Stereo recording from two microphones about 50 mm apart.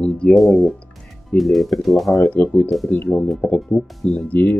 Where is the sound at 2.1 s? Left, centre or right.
Left.